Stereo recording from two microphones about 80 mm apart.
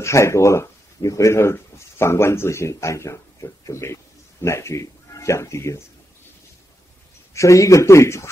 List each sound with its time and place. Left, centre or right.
0.0 s speech: left
7.3 s speech: left